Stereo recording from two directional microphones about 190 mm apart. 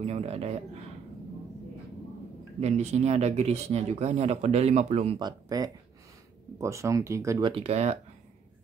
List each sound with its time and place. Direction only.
0.0 s speech: 35° right (ahead or behind)
2.6 s speech: 35° right (ahead or behind)